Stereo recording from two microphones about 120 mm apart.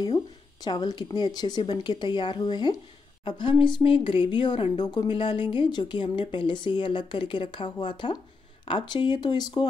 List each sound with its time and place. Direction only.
0.0 s a woman's voice: 35° left (ahead or behind)